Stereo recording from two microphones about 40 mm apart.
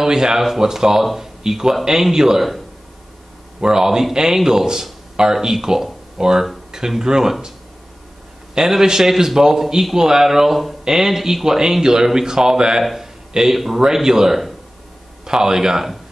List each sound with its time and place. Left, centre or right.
0.0 s a man's voice: centre
3.6 s a man's voice: centre
8.5 s a man's voice: centre
12.8 s a sound: centre
13.3 s a man's voice: centre